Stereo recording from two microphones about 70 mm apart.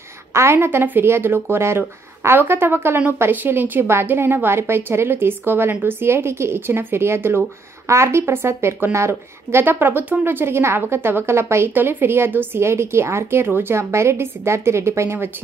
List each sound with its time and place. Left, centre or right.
0.3 s a woman's voice: right